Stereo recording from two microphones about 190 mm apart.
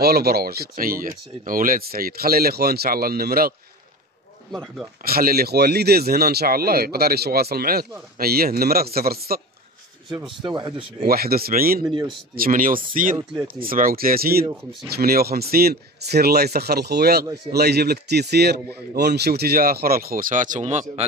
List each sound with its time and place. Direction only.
0.0 s speech: 55° right (ahead or behind)
5.0 s speech: 50° right (ahead or behind)
10.1 s speech: 25° right (ahead or behind)
11.0 s speech: 55° right (ahead or behind)
11.8 s speech: 20° right (ahead or behind)
12.4 s speech: 45° right (ahead or behind)